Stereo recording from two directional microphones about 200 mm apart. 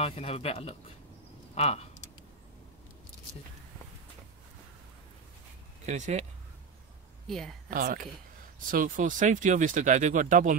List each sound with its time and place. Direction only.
0.0 s speech: 30° left (ahead or behind)
5.9 s speech: 35° right (ahead or behind)
7.2 s a woman's voice: centre (ahead or behind)
7.7 s speech: 45° right (ahead or behind)